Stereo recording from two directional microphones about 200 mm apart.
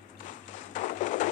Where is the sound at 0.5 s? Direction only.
40° left (ahead or behind).